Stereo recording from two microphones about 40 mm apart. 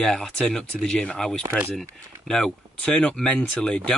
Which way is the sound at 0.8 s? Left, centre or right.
Left.